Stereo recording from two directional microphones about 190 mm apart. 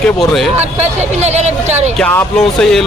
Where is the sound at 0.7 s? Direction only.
35° right (ahead or behind).